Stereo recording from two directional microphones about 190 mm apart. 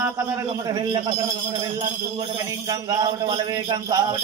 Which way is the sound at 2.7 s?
20° right (ahead or behind).